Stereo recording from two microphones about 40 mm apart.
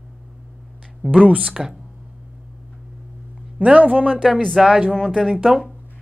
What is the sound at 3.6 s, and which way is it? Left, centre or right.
Speech, right.